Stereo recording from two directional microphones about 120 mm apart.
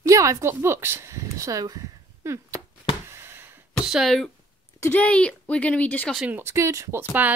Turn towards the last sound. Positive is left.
turn(degrees=-15)  # may be behind; listen again after turning